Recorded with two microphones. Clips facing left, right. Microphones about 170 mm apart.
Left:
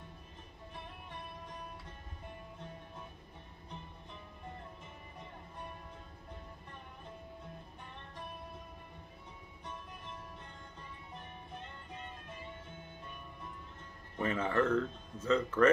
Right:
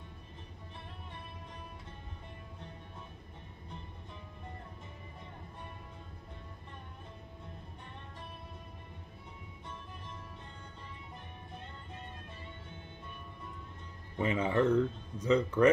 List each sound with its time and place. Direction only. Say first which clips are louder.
14.1 s speech: right 2 dB; 15° right (ahead or behind)